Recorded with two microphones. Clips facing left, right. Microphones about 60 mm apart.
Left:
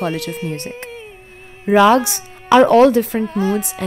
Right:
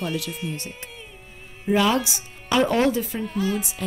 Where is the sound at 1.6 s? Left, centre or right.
Left.